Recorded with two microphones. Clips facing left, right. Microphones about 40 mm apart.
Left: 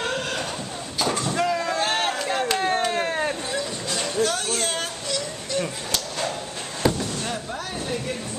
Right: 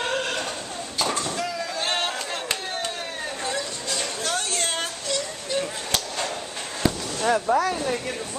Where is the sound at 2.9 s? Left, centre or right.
Left.